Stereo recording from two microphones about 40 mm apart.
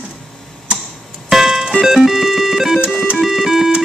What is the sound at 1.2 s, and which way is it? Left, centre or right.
Music, centre.